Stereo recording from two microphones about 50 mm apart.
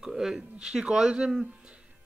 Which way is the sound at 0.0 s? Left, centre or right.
Centre.